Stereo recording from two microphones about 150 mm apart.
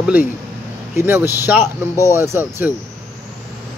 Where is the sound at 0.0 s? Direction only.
10° right (ahead or behind).